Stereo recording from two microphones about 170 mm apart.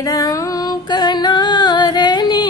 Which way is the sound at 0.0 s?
20° left (ahead or behind).